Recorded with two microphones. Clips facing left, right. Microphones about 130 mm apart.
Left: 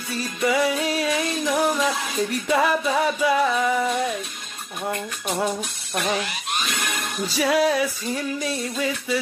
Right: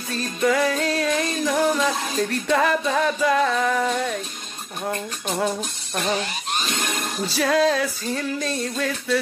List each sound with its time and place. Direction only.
0.1 s music: 10° left (ahead or behind)
6.6 s speech: 30° right (ahead or behind)
7.3 s music: 10° left (ahead or behind)